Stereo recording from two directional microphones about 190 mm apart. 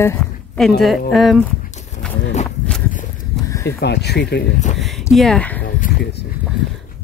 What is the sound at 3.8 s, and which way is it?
Speech, 60° left (ahead or behind).